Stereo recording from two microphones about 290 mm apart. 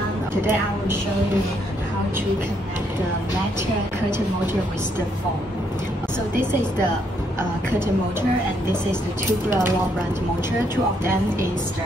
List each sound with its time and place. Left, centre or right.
0.3 s a woman's voice: centre